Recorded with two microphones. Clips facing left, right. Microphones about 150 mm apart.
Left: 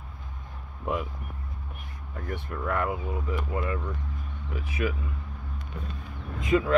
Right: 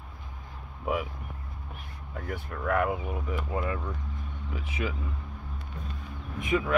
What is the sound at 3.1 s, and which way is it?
Speech, 15° right (ahead or behind).